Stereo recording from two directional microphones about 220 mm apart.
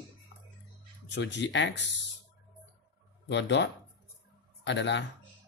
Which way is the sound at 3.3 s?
55° left (ahead or behind).